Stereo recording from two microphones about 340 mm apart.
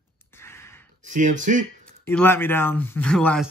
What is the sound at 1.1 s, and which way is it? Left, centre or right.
Speech, right.